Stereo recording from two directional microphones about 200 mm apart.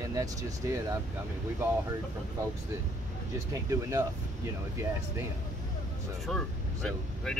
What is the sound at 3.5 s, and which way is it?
Speech, 15° right (ahead or behind).